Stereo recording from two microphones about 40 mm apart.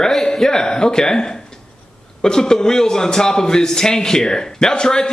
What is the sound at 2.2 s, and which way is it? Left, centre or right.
A man's voice, centre.